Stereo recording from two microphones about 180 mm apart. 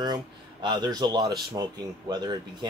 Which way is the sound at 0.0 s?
25° right (ahead or behind).